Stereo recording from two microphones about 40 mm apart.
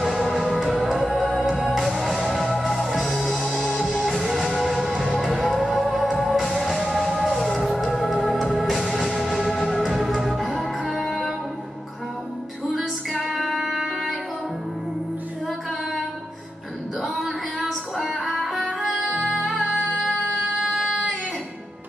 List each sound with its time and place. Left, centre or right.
0.0 s music: centre
12.7 s music: centre
17.0 s music: centre
18.9 s music: right